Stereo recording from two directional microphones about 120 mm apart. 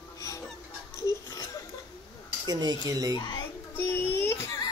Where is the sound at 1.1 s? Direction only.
30° left (ahead or behind).